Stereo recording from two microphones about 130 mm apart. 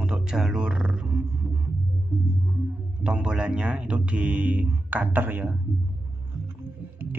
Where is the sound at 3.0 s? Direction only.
5° right (ahead or behind).